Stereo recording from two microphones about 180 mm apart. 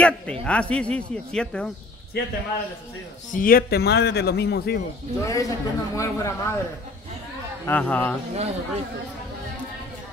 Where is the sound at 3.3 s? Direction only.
50° left (ahead or behind).